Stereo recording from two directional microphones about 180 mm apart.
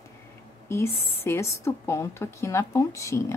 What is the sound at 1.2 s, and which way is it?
Speech, 15° left (ahead or behind).